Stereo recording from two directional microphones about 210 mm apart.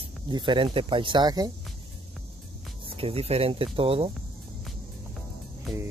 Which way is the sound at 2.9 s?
30° right (ahead or behind).